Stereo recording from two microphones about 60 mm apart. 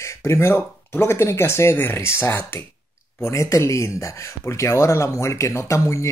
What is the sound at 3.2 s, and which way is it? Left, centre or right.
Speech, left.